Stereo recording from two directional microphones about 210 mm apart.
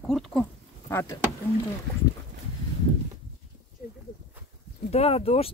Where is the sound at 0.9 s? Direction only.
10° left (ahead or behind).